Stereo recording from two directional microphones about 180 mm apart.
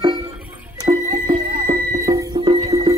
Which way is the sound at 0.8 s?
25° right (ahead or behind).